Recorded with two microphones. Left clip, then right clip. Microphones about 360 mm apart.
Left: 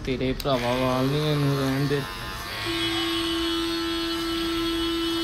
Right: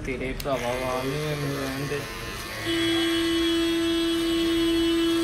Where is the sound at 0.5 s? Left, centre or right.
Left.